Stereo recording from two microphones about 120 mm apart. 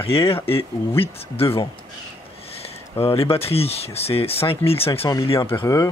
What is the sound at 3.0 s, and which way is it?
Speech, 55° left (ahead or behind).